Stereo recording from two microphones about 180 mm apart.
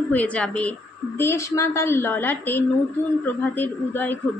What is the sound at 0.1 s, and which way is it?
A man's voice, 5° left (ahead or behind).